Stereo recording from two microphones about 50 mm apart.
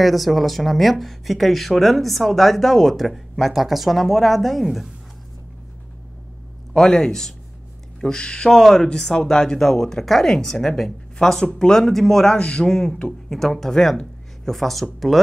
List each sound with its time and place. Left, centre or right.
0.0 s speech: centre
6.7 s speech: centre
12.4 s a man's voice: centre
13.3 s speech: centre